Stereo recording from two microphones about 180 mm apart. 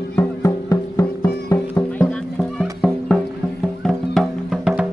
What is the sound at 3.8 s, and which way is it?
Music, centre (ahead or behind).